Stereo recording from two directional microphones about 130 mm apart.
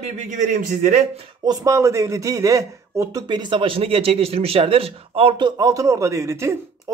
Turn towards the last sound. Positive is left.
turn(degrees=-20)  # may be behind; listen again after turning